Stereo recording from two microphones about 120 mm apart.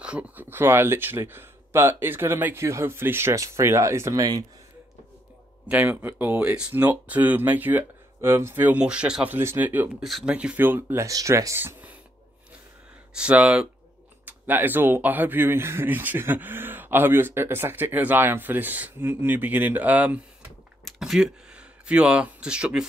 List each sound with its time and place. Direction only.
0.0 s speech: 10° right (ahead or behind); by 4.5 s 30° right (ahead or behind)
5.7 s speech: 15° right (ahead or behind)
10.0 s speech: centre (ahead or behind)
10.3 s speech: 10° right (ahead or behind)
11.1 s speech: 25° right (ahead or behind)
13.1 s speech: 10° right (ahead or behind)